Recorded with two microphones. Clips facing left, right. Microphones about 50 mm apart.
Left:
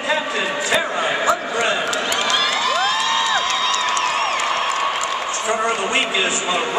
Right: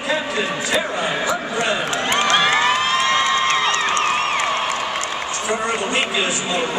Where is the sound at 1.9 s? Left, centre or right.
Right.